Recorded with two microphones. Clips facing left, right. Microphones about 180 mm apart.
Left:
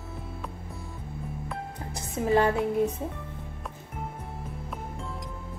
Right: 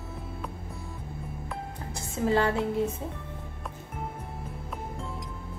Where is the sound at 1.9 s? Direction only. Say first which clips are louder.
Left 1 dB; 20° left (ahead or behind).